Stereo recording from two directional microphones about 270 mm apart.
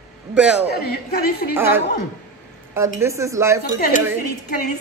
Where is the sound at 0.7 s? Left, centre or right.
Left.